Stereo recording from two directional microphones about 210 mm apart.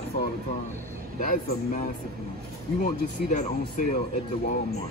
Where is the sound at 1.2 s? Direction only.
40° left (ahead or behind).